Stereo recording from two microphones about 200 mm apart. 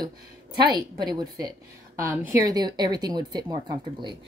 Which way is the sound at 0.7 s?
20° right (ahead or behind).